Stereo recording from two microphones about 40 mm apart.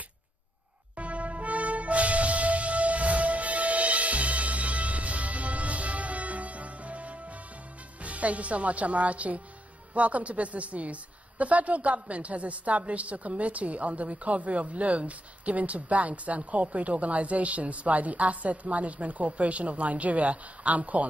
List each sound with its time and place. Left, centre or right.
0.9 s music: right
8.0 s a woman's voice: right